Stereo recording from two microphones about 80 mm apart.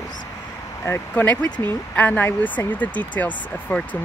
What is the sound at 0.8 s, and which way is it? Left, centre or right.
Speech, left.